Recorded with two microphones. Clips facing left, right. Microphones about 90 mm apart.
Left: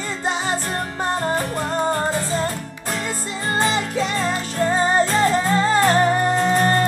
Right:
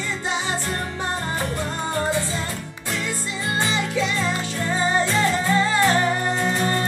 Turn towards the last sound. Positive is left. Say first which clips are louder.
# left 5 dB
turn(degrees=45)  # may be behind; listen again after turning